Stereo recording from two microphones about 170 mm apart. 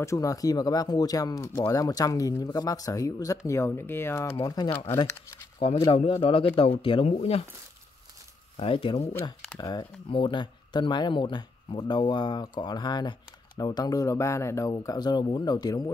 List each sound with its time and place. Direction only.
0.0 s speech: 20° left (ahead or behind)
4.6 s speech: 15° left (ahead or behind)
5.9 s speech: 35° left (ahead or behind)
8.5 s speech: 35° left (ahead or behind)